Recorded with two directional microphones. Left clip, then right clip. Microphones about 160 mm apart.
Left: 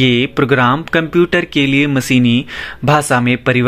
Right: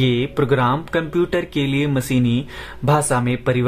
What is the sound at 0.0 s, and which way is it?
Speech, 20° left (ahead or behind).